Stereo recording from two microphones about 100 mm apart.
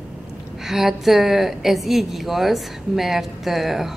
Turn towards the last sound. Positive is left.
turn(degrees=0)  # may be behind; listen again after turning